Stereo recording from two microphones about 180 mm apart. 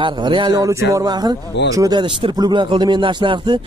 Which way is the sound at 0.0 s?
25° right (ahead or behind).